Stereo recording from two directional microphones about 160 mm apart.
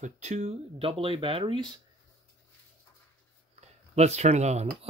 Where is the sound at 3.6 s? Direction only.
45° right (ahead or behind).